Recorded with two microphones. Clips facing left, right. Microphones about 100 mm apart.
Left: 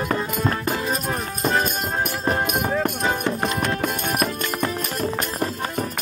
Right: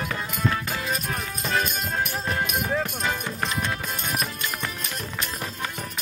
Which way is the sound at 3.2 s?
60° left (ahead or behind).